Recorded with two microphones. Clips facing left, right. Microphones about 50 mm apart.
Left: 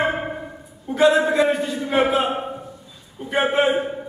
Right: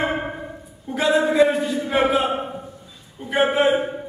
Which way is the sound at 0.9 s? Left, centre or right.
Centre.